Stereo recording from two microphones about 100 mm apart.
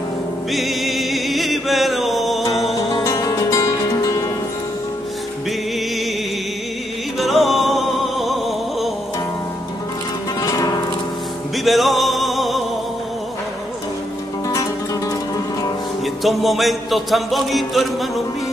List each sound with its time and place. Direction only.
0.5 s music: centre (ahead or behind)
3.0 s music: 35° left (ahead or behind)
7.2 s music: centre (ahead or behind)
10.4 s music: 40° left (ahead or behind)
11.5 s music: centre (ahead or behind)
14.5 s music: 30° left (ahead or behind)
16.2 s music: centre (ahead or behind)